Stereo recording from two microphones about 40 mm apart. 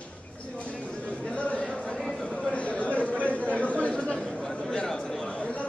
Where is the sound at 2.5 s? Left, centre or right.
Left.